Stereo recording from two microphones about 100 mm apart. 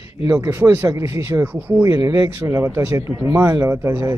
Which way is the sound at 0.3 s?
25° right (ahead or behind).